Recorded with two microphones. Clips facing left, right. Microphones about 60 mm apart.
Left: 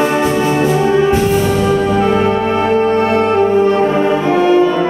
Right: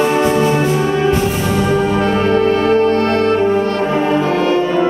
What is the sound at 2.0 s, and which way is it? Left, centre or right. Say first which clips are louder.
Music: even; centre.